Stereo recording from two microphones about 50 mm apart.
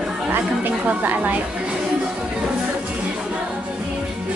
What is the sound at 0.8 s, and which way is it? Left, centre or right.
Speech, right.